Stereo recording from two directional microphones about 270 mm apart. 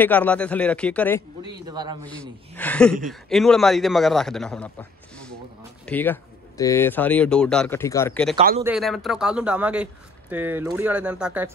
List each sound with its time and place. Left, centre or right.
0.0 s a man's voice: centre
1.4 s speech: centre
2.0 s a man's voice: centre